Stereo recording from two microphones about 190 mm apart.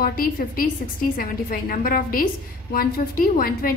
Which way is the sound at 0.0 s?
50° left (ahead or behind).